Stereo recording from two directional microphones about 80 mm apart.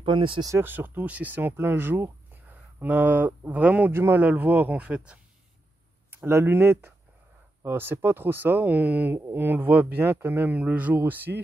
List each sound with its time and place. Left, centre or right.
0.0 s speech: right
0.6 s speech: right
3.9 s speech: right
4.2 s speech: right
6.1 s speech: right